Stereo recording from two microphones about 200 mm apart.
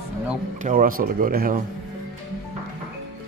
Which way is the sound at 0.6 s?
45° right (ahead or behind).